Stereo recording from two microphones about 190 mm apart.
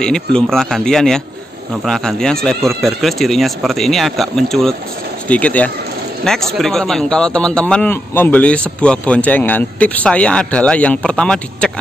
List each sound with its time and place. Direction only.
0.0 s a man's voice: 5° left (ahead or behind)